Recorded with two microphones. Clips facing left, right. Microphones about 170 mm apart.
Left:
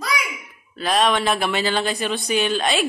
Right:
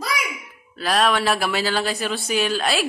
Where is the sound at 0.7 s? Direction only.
Centre (ahead or behind).